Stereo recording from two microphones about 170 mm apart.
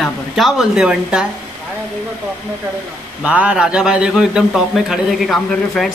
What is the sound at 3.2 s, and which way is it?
A man's voice, 10° right (ahead or behind).